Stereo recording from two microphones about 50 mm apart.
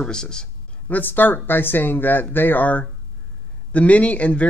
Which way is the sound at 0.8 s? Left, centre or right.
Left.